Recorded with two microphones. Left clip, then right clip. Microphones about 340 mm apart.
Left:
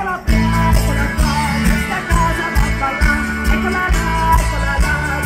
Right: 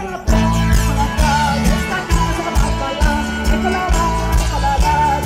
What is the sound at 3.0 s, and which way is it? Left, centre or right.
Music, right.